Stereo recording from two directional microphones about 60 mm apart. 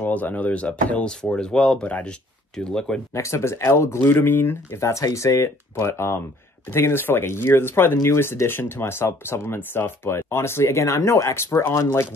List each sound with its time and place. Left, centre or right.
0.0 s speech: left
1.0 s speech: centre
1.9 s speech: left
2.5 s speech: centre
3.2 s speech: left